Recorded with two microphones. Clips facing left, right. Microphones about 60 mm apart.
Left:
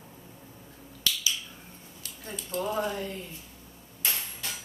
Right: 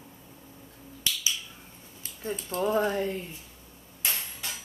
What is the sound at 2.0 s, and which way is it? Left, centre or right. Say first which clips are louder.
Speech: right 6 dB; right.